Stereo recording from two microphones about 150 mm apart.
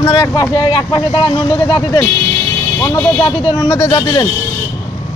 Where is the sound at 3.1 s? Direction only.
25° left (ahead or behind).